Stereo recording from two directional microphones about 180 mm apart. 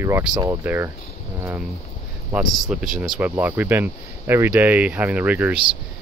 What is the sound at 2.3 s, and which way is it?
Speech, centre (ahead or behind).